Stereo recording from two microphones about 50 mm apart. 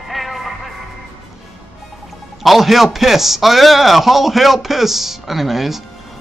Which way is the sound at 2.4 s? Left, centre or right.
Centre.